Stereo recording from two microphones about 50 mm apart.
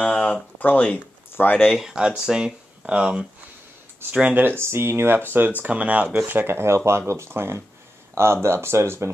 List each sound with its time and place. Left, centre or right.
0.0 s a sound: left
0.7 s speech: left
1.3 s speech: left
1.7 s speech: centre
4.3 s speech: right
4.6 s speech: right
5.6 s speech: right
6.2 s speech: right